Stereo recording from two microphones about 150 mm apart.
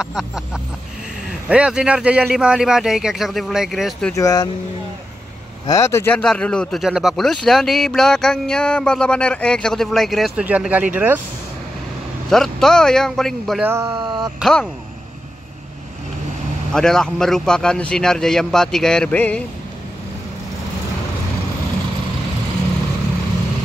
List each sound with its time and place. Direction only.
0.0 s speech: 5° right (ahead or behind)
4.1 s speech: 20° left (ahead or behind)
5.7 s speech: 20° left (ahead or behind); by 11.1 s 10° right (ahead or behind)
12.3 s speech: 5° left (ahead or behind)
13.6 s speech: 15° right (ahead or behind)
13.8 s speech: 30° right (ahead or behind)
14.4 s speech: centre (ahead or behind)
16.7 s speech: 5° left (ahead or behind)